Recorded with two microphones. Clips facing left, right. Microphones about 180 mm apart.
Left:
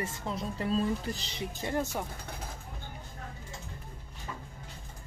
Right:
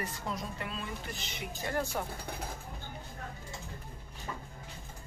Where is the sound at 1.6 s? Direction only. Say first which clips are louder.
Left 1 dB; 20° left (ahead or behind).